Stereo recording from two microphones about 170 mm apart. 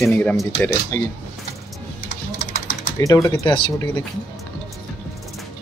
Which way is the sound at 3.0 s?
20° left (ahead or behind).